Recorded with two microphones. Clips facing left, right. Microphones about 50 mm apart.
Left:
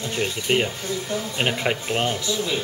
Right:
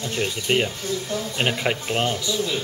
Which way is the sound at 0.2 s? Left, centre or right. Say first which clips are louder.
Even; centre.